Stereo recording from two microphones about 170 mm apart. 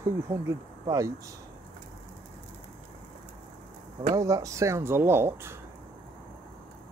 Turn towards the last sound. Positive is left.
turn(degrees=-15)  # may be behind; listen again after turning